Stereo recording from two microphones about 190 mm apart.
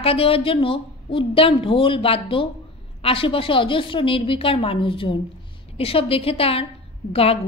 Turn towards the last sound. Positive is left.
turn(degrees=30)  # may be behind; listen again after turning